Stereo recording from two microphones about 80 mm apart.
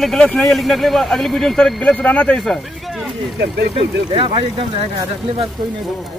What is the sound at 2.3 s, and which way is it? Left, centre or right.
Speech, centre.